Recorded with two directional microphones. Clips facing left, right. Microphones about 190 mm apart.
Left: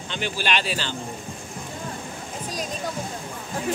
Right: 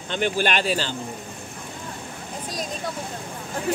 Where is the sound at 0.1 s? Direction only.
50° right (ahead or behind).